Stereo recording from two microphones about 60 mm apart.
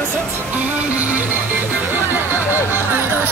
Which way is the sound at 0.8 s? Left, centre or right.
Right.